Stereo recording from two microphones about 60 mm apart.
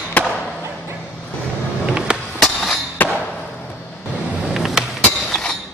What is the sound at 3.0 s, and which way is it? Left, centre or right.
Arrow, left.